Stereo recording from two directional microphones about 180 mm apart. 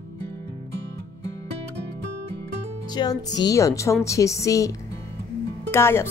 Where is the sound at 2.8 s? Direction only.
20° left (ahead or behind).